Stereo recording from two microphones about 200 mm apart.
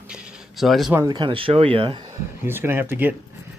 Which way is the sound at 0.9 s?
15° right (ahead or behind).